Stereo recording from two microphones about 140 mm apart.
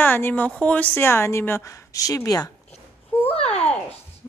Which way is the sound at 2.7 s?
45° left (ahead or behind).